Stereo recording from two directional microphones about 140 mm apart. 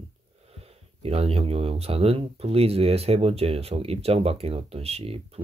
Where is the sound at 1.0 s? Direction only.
45° right (ahead or behind).